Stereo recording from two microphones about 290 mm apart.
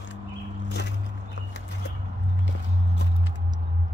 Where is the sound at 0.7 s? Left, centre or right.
Left.